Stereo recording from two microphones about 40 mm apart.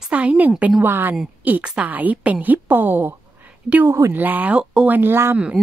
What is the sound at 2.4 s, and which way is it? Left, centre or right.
Speech, right.